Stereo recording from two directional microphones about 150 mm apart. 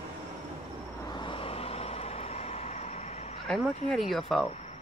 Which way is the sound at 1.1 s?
35° left (ahead or behind).